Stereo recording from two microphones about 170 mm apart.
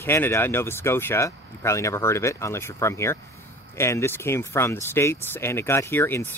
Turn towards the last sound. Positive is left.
turn(degrees=15)  # may be behind; listen again after turning